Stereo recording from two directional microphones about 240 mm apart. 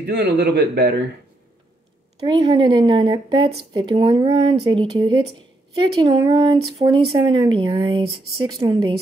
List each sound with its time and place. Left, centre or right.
0.0 s a man's voice: right
2.2 s speech: centre